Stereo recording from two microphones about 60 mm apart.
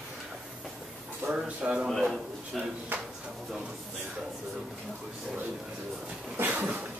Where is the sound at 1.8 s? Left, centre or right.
Centre.